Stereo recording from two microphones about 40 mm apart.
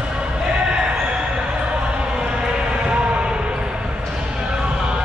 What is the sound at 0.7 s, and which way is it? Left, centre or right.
Basketball bounce, right.